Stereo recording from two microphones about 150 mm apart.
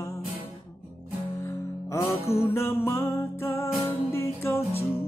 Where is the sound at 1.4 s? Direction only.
20° left (ahead or behind).